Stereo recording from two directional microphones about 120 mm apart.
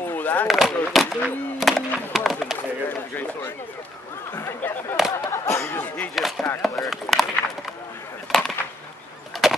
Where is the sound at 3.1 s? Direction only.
15° left (ahead or behind).